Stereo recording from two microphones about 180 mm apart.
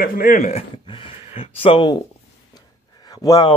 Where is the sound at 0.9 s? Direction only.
30° left (ahead or behind).